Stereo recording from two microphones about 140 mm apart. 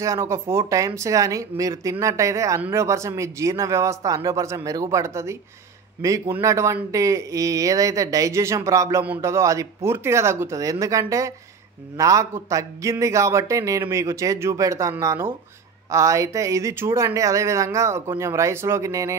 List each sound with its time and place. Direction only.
0.0 s a man's voice: 20° right (ahead or behind)